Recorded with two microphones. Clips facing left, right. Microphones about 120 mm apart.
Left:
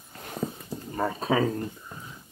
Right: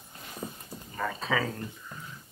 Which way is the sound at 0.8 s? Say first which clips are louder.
Left 5 dB; 40° left (ahead or behind).